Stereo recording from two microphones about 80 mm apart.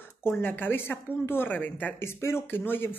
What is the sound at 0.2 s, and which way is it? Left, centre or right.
Speech, left.